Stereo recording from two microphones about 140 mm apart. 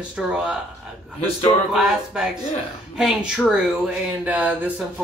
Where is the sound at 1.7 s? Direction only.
5° right (ahead or behind).